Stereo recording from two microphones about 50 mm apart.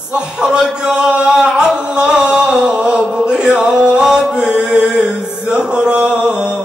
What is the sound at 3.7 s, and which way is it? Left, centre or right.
Music, centre.